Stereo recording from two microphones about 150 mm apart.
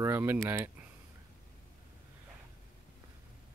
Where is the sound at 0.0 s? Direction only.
15° right (ahead or behind).